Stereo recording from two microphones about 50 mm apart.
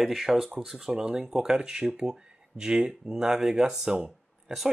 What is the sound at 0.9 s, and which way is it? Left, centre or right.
Speech, centre.